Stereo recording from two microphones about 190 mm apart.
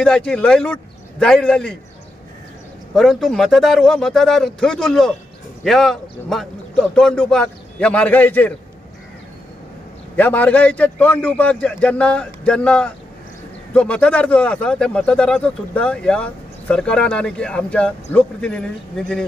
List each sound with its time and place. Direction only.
0.0 s speech: 5° left (ahead or behind)
2.9 s speech: centre (ahead or behind)
10.1 s a man's voice: 10° left (ahead or behind)